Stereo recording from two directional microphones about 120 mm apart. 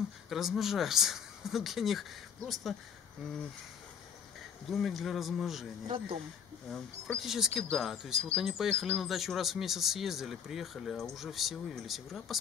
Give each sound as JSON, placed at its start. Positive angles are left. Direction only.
{"t": 0.3, "sound": "speech", "side_deg": 0}
{"t": 4.6, "sound": "speech", "side_deg": 0}
{"t": 6.7, "sound": "speech", "side_deg": 0}